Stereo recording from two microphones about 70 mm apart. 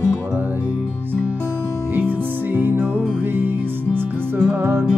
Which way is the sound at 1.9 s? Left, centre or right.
Right.